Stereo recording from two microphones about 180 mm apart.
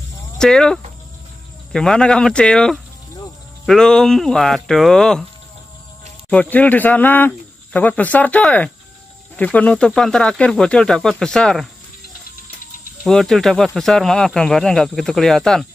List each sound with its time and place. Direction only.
0.4 s speech: 5° left (ahead or behind)
6.3 s speech: 5° left (ahead or behind)
13.0 s speech: centre (ahead or behind)